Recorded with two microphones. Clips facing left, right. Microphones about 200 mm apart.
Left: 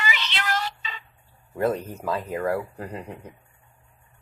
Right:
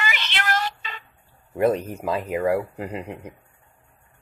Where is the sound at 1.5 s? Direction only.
20° right (ahead or behind).